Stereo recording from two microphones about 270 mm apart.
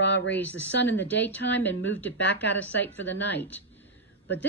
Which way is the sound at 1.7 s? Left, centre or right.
Left.